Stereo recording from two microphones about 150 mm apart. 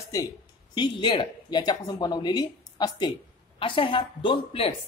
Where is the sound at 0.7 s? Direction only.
30° left (ahead or behind).